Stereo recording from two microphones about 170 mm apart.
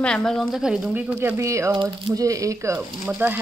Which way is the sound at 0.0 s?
5° left (ahead or behind).